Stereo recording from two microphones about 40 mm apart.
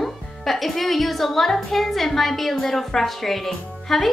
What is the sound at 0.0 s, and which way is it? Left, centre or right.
A woman's voice, centre.